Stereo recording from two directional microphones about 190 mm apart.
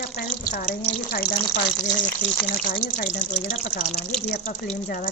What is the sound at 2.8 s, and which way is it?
Speech, 45° left (ahead or behind).